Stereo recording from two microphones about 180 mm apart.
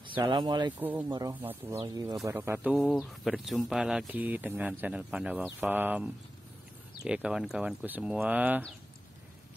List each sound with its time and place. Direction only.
0.0 s speech: 25° right (ahead or behind)
0.7 s speech: 10° right (ahead or behind)
2.8 s speech: centre (ahead or behind)